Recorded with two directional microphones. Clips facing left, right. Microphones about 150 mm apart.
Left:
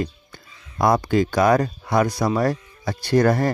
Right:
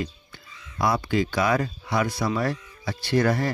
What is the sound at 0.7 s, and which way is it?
A man's voice, 45° left (ahead or behind).